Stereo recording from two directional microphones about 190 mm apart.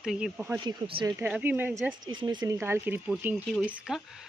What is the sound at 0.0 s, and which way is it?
Speech, 5° right (ahead or behind).